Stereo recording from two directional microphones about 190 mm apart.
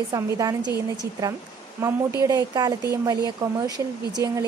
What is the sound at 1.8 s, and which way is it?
A woman's voice, 15° right (ahead or behind).